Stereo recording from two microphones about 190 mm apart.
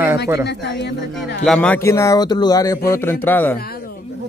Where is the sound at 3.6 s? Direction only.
55° left (ahead or behind).